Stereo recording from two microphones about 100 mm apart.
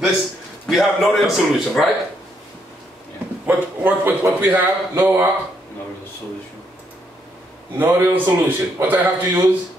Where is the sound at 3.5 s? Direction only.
20° right (ahead or behind).